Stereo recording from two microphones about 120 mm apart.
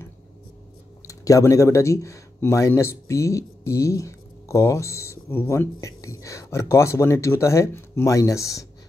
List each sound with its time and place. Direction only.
1.0 s speech: 30° left (ahead or behind)